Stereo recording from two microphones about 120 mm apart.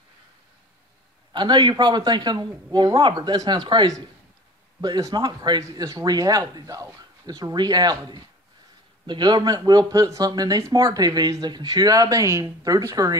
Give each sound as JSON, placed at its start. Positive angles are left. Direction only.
{"t": 1.3, "sound": "speech", "side_deg": -40}